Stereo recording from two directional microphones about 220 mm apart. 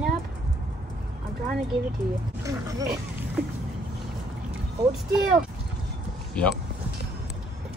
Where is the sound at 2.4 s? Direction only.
15° right (ahead or behind).